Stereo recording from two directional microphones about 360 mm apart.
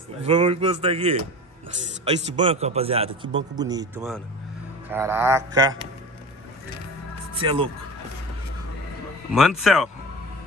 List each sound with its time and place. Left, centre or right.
0.2 s a man's voice: centre
7.3 s a man's voice: centre
9.3 s speech: centre